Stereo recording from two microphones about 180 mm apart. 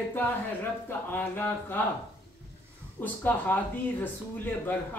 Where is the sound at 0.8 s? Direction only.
10° left (ahead or behind).